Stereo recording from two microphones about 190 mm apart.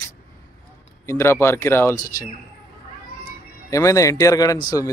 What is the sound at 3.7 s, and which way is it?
Speech, 15° left (ahead or behind).